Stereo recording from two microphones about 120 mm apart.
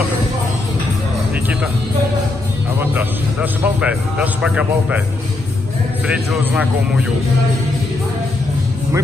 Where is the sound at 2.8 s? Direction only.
15° right (ahead or behind).